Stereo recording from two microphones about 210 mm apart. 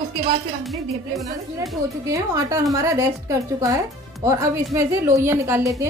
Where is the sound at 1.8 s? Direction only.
15° right (ahead or behind).